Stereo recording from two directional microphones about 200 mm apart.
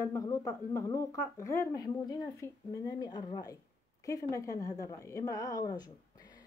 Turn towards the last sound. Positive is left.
turn(degrees=20)  # may be behind; listen again after turning